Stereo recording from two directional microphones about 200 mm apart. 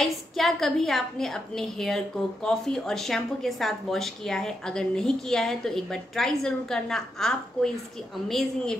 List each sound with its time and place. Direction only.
0.0 s a woman's voice: centre (ahead or behind)